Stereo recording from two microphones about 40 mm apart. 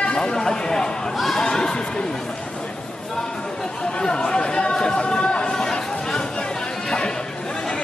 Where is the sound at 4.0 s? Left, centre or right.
Left.